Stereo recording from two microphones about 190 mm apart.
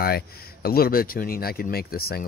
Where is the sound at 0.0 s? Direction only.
55° left (ahead or behind).